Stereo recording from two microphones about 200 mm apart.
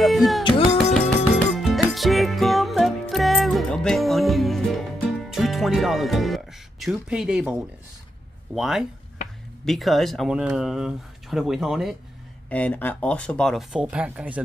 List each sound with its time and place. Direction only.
0.0 s speech: centre (ahead or behind)
0.7 s music: 5° left (ahead or behind)
8.5 s speech: centre (ahead or behind)